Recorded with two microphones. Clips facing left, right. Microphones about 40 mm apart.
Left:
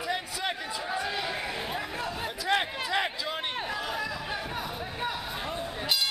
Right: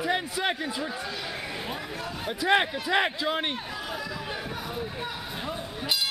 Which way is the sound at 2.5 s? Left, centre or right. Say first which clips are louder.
Right 4 dB; right.